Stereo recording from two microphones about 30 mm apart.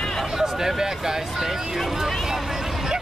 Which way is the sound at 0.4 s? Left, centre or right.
Centre.